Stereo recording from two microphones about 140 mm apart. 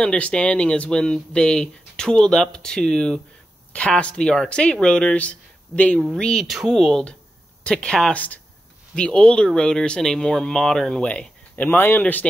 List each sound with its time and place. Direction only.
0.0 s speech: 5° left (ahead or behind)